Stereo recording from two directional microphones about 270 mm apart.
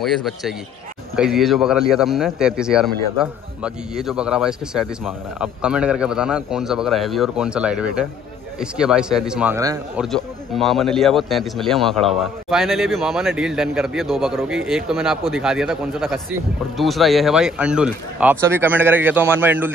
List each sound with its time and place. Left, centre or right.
0.0 s a man's voice: centre
10.0 s a man's voice: centre